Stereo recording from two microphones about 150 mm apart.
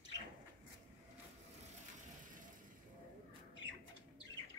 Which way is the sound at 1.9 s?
60° right (ahead or behind).